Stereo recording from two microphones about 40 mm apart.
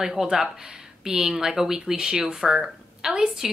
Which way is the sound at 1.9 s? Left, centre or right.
Right.